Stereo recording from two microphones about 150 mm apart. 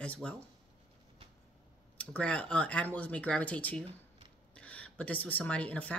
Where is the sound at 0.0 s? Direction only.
10° left (ahead or behind).